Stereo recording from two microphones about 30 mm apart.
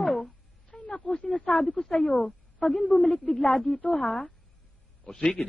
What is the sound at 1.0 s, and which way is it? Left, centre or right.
Speech, left.